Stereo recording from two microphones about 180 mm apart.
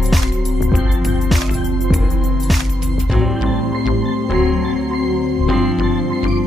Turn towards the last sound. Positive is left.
turn(degrees=0)  # may be behind; listen again after turning